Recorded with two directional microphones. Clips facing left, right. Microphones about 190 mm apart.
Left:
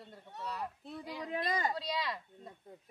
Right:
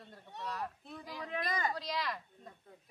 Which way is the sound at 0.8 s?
20° left (ahead or behind).